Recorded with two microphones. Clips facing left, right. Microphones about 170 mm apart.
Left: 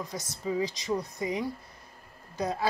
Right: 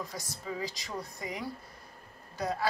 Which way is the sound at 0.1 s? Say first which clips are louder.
Left 7 dB; 20° left (ahead or behind).